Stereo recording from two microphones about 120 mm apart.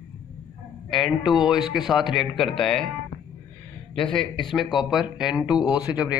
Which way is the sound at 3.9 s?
5° left (ahead or behind).